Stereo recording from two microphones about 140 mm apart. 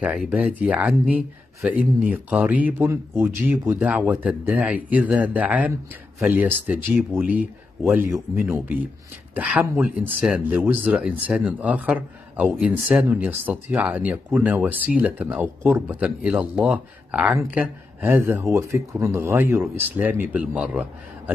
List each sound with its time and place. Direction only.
0.3 s a man's voice: 10° right (ahead or behind)